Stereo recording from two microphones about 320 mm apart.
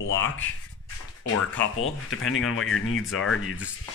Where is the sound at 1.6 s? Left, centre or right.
Left.